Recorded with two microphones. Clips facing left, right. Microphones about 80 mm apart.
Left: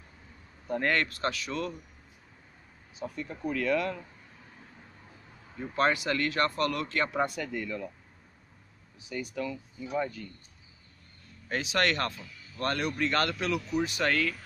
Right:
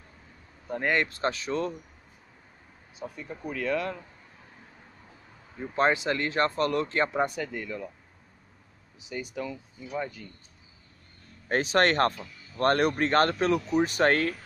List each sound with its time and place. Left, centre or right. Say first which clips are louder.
0.7 s speech: right 1 dB; centre
3.2 s speech: left 2 dB; centre
5.6 s speech: right 2 dB; right
7.3 s speech: right 1 dB; centre
9.0 s speech: even; centre
11.4 s speech: right 5 dB; right